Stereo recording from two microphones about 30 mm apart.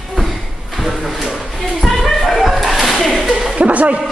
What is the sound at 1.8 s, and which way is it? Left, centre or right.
Music, centre.